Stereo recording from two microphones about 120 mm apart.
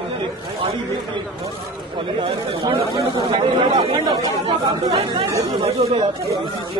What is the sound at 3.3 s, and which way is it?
Speech, 55° right (ahead or behind).